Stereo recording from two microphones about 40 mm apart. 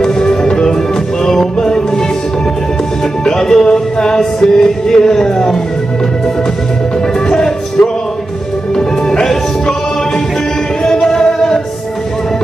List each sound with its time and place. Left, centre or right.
0.0 s music: centre
3.3 s music: centre
7.2 s music: centre